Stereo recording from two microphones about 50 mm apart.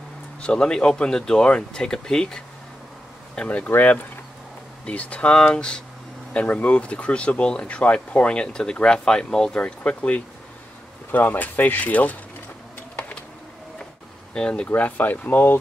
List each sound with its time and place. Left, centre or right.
0.4 s speech: centre
3.3 s speech: left
6.3 s speech: left
11.1 s speech: left
14.3 s speech: centre
14.8 s speech: left